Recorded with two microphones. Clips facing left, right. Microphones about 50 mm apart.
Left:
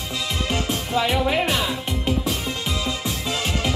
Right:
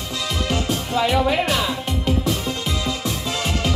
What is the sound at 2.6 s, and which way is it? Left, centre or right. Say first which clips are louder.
Music: right 1 dB; centre.